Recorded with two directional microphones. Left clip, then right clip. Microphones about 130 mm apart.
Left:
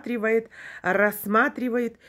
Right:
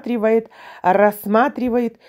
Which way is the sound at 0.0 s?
15° right (ahead or behind).